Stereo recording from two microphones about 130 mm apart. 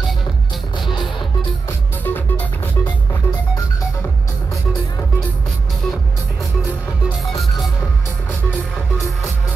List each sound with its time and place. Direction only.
2.0 s music: 15° left (ahead or behind)